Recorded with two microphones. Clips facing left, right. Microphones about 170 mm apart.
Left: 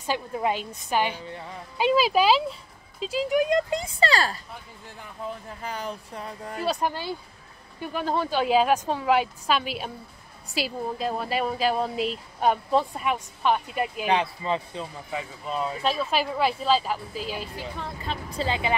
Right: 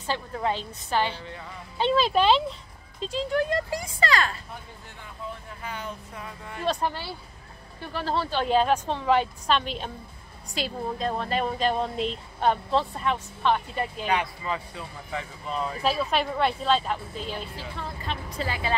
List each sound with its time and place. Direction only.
0.0 s speech: 15° left (ahead or behind); by 4.4 s 35° left (ahead or behind)
5.6 s speech: 35° left (ahead or behind)
6.6 s speech: 10° left (ahead or behind)
14.0 s speech: 25° left (ahead or behind)
15.0 s speech: 10° left (ahead or behind)
15.8 s speech: centre (ahead or behind)
18.0 s speech: 35° left (ahead or behind)
18.5 s speech: 20° left (ahead or behind)